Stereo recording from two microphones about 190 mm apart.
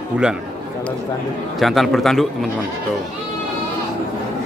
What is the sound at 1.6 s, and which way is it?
Speech, centre (ahead or behind).